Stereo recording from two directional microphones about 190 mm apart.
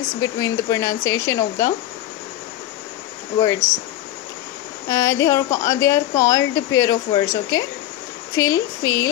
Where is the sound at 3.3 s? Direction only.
15° left (ahead or behind).